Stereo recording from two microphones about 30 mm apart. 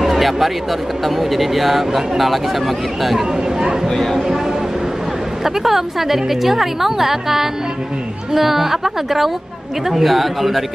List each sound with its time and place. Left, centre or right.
0.0 s a sound: centre
1.0 s speech: centre
3.9 s speech: centre
5.4 s a woman's voice: centre